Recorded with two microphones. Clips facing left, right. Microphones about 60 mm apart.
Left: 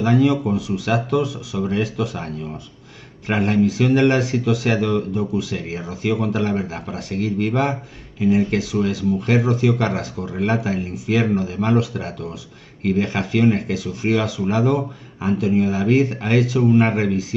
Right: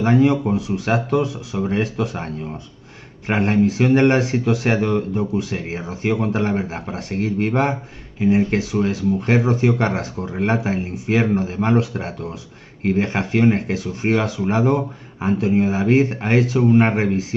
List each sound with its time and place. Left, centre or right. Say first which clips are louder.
0.0 s speech: right 1 dB; right